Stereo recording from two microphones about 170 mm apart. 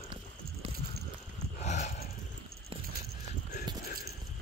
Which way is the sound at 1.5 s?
45° left (ahead or behind).